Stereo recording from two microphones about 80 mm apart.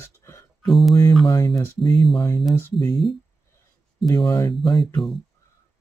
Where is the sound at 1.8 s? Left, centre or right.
Left.